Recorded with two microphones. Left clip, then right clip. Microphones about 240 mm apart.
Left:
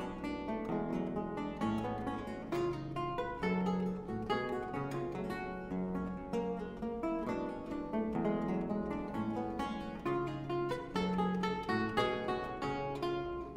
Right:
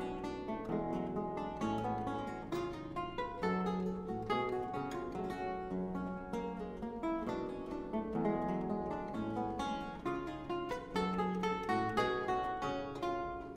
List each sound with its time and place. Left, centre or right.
3.2 s music: left
7.9 s music: left